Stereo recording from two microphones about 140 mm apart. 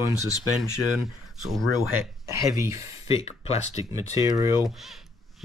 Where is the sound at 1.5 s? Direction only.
20° right (ahead or behind).